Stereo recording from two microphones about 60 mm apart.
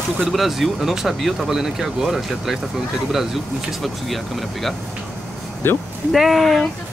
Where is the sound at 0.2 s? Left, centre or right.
Centre.